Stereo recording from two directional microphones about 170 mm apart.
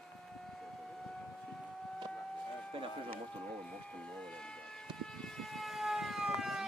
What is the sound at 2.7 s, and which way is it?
Speech, 30° right (ahead or behind).